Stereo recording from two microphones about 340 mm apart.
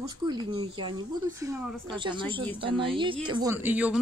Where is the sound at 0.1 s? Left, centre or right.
Centre.